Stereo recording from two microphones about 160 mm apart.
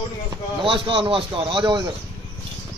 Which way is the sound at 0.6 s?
35° right (ahead or behind).